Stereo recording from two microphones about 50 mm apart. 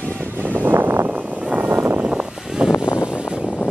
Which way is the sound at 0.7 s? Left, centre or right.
Right.